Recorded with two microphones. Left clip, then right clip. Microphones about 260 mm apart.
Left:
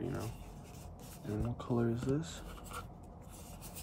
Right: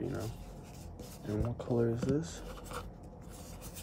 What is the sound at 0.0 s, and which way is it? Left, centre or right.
Writing, centre.